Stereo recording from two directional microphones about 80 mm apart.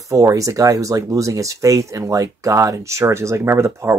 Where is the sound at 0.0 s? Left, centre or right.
Right.